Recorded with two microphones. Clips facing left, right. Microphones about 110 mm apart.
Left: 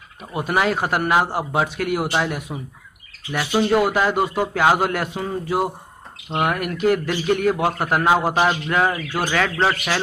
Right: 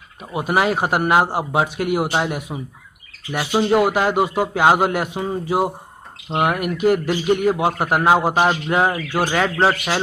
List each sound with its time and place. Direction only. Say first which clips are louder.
0.3 s speech: right 2 dB; 15° right (ahead or behind)